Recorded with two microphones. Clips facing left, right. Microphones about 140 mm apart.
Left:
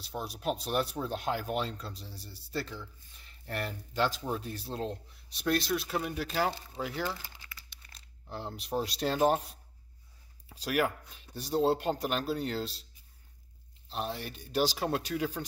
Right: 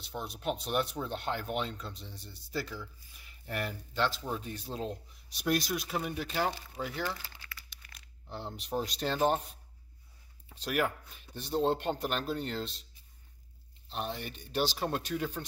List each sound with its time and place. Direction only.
0.0 s speech: 5° left (ahead or behind)
7.1 s crumpling: 20° left (ahead or behind)
8.3 s speech: centre (ahead or behind)
10.5 s speech: 5° left (ahead or behind)
13.8 s speech: centre (ahead or behind)